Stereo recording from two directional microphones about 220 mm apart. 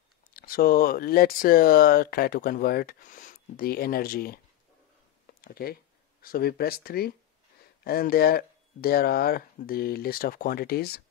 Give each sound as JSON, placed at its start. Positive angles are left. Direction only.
{"t": 0.3, "sound": "speech", "side_deg": 40}
{"t": 5.2, "sound": "a sound", "side_deg": 45}
{"t": 6.2, "sound": "speech", "side_deg": 45}